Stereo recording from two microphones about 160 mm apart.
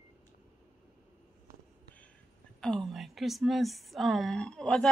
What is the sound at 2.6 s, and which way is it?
A woman's voice, 5° left (ahead or behind).